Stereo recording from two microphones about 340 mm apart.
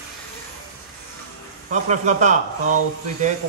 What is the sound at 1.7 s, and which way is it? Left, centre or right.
Speech, right.